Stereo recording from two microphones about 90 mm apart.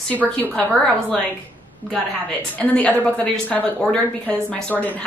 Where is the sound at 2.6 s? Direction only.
15° left (ahead or behind).